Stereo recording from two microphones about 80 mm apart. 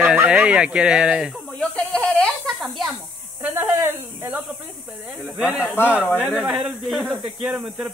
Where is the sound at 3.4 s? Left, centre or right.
Right.